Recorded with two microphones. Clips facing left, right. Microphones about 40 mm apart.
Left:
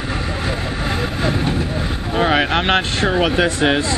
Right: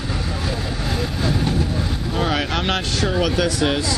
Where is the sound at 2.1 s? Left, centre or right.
Left.